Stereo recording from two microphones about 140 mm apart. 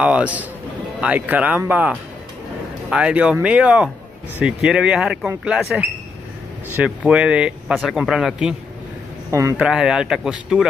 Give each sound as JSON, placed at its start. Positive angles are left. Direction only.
{"t": 0.0, "sound": "speech", "side_deg": -10}
{"t": 9.3, "sound": "speech", "side_deg": -20}
{"t": 9.6, "sound": "speech", "side_deg": -5}